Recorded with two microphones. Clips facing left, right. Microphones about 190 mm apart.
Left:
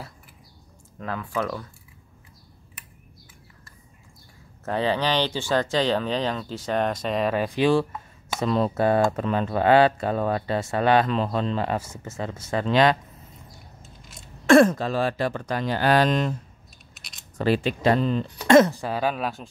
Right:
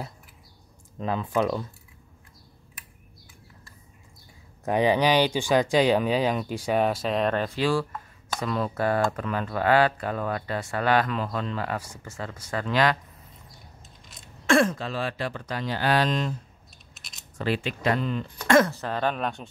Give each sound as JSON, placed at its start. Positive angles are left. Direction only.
{"t": 0.9, "sound": "speech", "side_deg": -20}
{"t": 4.6, "sound": "speech", "side_deg": -15}
{"t": 7.4, "sound": "a sound", "side_deg": 20}
{"t": 8.4, "sound": "speech", "side_deg": 25}
{"t": 14.0, "sound": "a sound", "side_deg": 0}
{"t": 14.4, "sound": "speech", "side_deg": 45}
{"t": 17.4, "sound": "speech", "side_deg": 35}
{"t": 18.5, "sound": "speech", "side_deg": 20}